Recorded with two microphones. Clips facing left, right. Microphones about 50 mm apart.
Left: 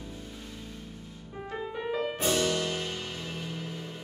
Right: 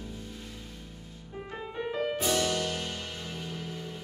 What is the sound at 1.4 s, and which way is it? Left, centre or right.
Music, centre.